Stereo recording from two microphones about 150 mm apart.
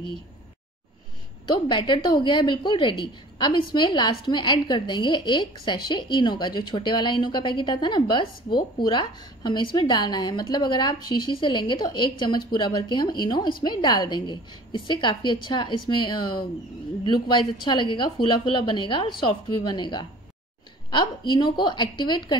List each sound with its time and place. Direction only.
1.5 s a woman's voice: 30° left (ahead or behind)